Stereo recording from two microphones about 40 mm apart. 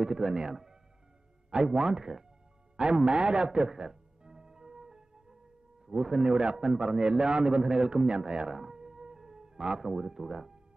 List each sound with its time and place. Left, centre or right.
0.0 s a man's voice: centre
2.8 s music: right
5.9 s a man's voice: centre
8.5 s music: centre
9.8 s speech: centre